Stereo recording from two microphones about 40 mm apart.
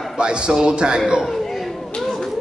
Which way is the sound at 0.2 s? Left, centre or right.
Right.